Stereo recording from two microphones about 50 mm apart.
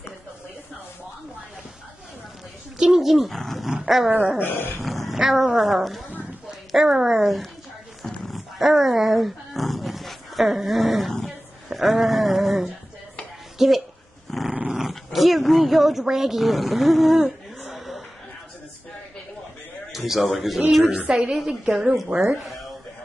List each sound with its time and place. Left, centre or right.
2.8 s speech: centre
3.7 s a woman's voice: centre
4.1 s a woman's voice: right
4.4 s speech: left
4.7 s a woman's voice: centre
8.0 s dog: centre
11.2 s a sound: centre
14.3 s dog: centre
14.7 s dog: centre
15.1 s speech: centre
19.9 s a man's voice: centre
20.9 s a woman's voice: right
21.3 s a woman's voice: centre